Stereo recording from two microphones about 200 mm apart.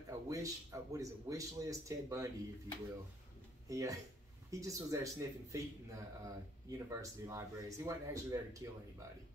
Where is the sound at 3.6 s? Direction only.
15° right (ahead or behind).